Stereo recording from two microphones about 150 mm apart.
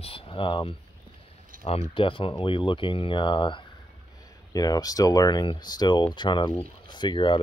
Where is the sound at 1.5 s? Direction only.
65° right (ahead or behind).